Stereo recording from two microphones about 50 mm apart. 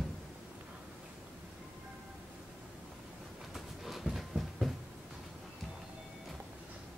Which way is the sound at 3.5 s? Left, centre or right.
Centre.